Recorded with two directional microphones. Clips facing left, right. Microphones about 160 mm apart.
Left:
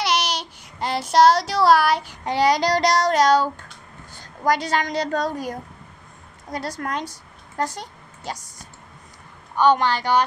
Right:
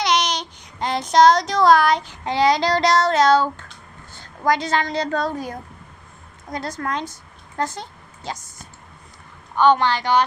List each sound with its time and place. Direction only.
0.0 s child singing: 5° left (ahead or behind)
6.5 s speech: 10° left (ahead or behind)
9.8 s speech: 40° left (ahead or behind)